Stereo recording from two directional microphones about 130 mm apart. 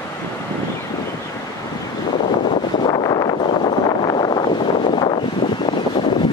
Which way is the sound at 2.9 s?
35° left (ahead or behind).